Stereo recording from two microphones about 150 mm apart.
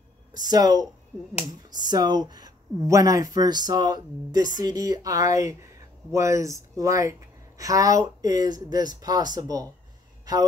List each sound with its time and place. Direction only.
0.3 s speech: 25° right (ahead or behind)